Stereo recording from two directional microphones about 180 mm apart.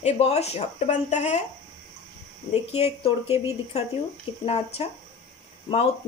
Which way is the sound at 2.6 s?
35° left (ahead or behind).